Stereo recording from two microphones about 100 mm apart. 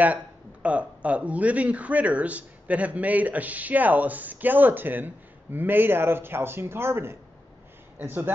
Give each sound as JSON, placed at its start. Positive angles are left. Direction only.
{"t": 0.0, "sound": "speech", "side_deg": -15}